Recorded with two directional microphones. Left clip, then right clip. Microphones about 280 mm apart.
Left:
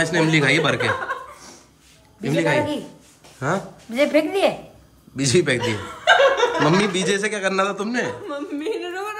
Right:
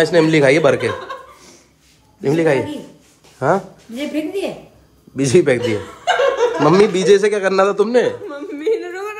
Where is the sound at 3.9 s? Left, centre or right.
Centre.